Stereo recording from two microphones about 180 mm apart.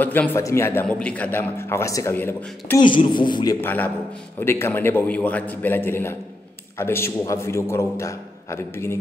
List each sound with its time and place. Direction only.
0.0 s a man's voice: 10° left (ahead or behind)
3.1 s a man's voice: 25° left (ahead or behind)
3.6 s a man's voice: 10° left (ahead or behind)